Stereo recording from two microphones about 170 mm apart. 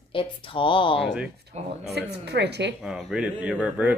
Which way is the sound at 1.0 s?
5° right (ahead or behind).